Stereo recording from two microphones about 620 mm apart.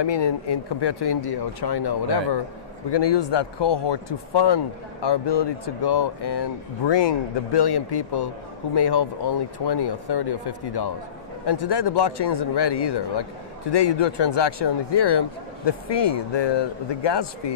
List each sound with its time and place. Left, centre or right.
0.0 s a man's voice: left